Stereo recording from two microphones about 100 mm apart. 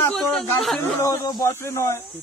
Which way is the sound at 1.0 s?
30° left (ahead or behind).